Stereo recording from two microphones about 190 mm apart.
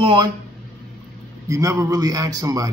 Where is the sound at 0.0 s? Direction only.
25° right (ahead or behind).